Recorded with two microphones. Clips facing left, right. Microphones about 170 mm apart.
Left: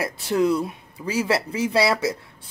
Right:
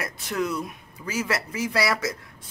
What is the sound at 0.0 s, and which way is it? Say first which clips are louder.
Speech: left 7 dB; 30° left (ahead or behind).